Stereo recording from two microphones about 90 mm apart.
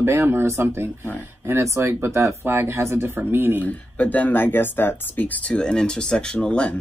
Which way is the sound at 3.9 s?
20° left (ahead or behind).